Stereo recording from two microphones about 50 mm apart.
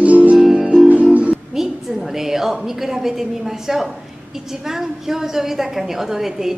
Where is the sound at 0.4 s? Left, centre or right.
Centre.